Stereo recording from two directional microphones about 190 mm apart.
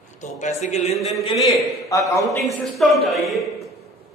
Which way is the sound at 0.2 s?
35° left (ahead or behind).